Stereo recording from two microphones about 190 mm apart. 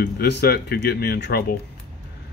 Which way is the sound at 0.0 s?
60° left (ahead or behind).